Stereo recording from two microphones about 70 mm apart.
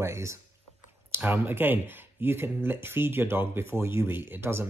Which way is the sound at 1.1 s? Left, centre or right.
Right.